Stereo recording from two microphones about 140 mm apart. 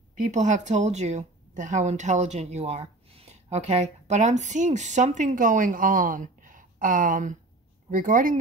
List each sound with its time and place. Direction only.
0.2 s a woman's voice: 60° right (ahead or behind)